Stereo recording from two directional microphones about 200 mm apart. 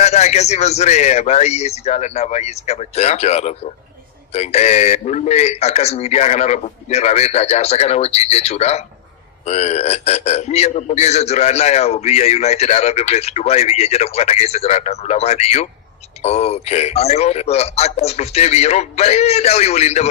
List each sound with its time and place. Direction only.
0.0 s a man's voice: 35° left (ahead or behind)